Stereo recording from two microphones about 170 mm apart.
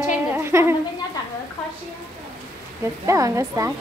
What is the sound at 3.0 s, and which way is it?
Speech, 20° right (ahead or behind).